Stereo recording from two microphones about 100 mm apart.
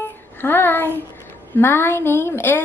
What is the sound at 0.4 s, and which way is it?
A woman's voice, 20° left (ahead or behind).